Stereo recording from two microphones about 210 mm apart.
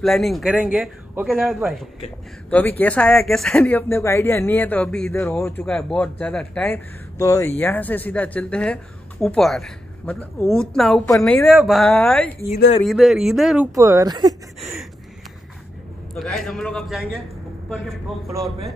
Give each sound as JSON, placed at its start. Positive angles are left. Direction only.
{"t": 0.0, "sound": "speech", "side_deg": 0}
{"t": 2.8, "sound": "speech", "side_deg": 5}
{"t": 13.7, "sound": "speech", "side_deg": -15}
{"t": 16.2, "sound": "speech", "side_deg": 0}